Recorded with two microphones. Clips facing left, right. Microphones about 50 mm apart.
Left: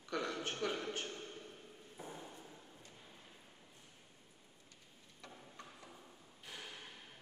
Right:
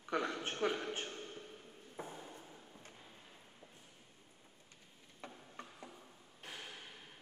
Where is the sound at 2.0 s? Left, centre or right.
Right.